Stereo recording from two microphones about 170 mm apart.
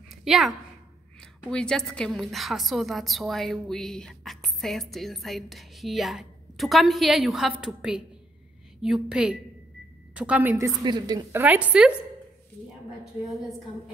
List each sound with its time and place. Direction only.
0.2 s a woman's voice: centre (ahead or behind); by 11.4 s 20° right (ahead or behind)
11.4 s a woman's voice: 10° right (ahead or behind)